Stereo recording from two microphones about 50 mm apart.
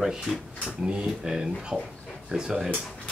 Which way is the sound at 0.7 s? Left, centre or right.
Centre.